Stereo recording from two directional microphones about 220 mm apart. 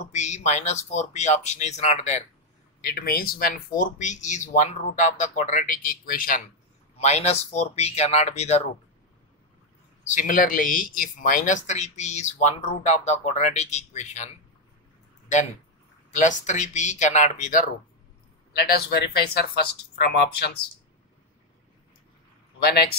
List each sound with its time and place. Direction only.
0.0 s speech: 30° left (ahead or behind)
2.8 s speech: 45° left (ahead or behind)
10.0 s speech: 35° left (ahead or behind)
16.1 s speech: 35° left (ahead or behind)